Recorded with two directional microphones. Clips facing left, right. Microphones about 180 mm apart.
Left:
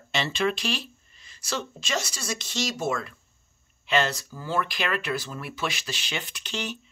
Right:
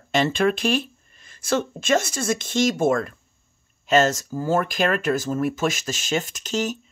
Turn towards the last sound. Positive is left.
turn(degrees=-40)  # may be behind; listen again after turning